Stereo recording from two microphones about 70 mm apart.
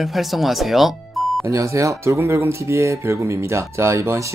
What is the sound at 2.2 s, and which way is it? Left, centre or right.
Speech, right.